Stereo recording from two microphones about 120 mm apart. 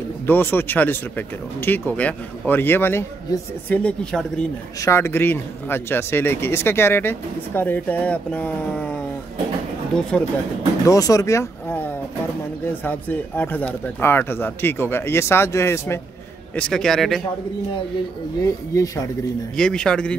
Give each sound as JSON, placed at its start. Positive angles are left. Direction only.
{"t": 0.3, "sound": "speech", "side_deg": 15}
{"t": 4.8, "sound": "a man's voice", "side_deg": 20}
{"t": 10.9, "sound": "speech", "side_deg": 30}
{"t": 16.5, "sound": "a man's voice", "side_deg": 5}
{"t": 18.4, "sound": "speech", "side_deg": 25}
{"t": 19.5, "sound": "speech", "side_deg": 5}